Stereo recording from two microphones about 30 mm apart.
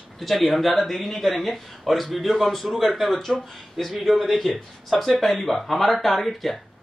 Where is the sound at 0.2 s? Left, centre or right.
Centre.